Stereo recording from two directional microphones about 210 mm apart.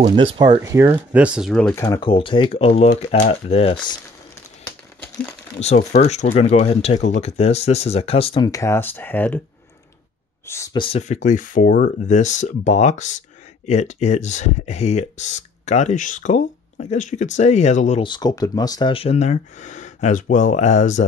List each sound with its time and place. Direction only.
0.0 s speech: 25° right (ahead or behind); by 3.9 s 25° left (ahead or behind)
4.6 s crumpling: 10° left (ahead or behind)
5.6 s speech: 30° left (ahead or behind); by 9.4 s 10° left (ahead or behind)
10.4 s speech: 15° left (ahead or behind); by 21.0 s 35° left (ahead or behind)